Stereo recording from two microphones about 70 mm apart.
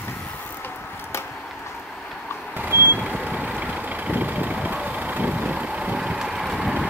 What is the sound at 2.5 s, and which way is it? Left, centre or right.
Vehicle, right.